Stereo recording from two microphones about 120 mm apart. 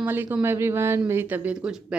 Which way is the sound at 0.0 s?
15° right (ahead or behind).